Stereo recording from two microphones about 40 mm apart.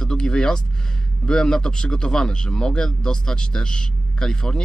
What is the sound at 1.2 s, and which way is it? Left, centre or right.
A man's voice, left.